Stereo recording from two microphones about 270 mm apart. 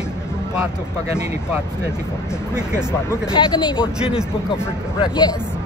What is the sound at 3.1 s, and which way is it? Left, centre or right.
Speech, centre.